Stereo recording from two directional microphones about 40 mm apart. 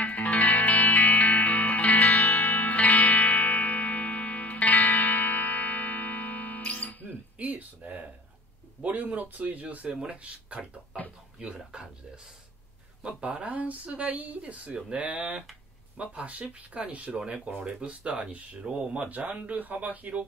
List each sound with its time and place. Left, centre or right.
0.0 s music: left
7.3 s a sound: right
8.8 s speech: right
9.8 s speech: right
11.5 s speech: centre
13.0 s speech: right